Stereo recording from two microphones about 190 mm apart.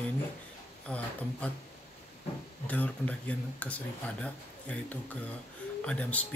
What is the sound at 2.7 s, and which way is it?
Speech, 10° left (ahead or behind).